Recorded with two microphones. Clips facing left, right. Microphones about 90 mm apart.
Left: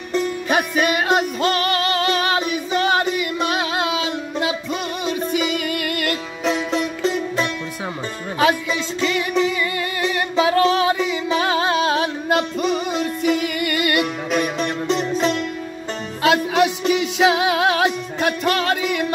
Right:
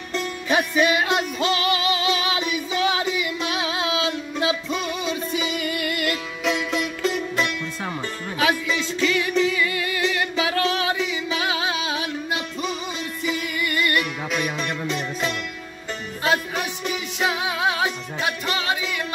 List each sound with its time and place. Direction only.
0.5 s music: 55° left (ahead or behind)
6.4 s music: 35° left (ahead or behind); by 9.6 s 15° left (ahead or behind)
9.6 s music: 30° left (ahead or behind); by 14.0 s 70° left (ahead or behind)
16.2 s music: 85° left; by 19.0 s 55° left (ahead or behind)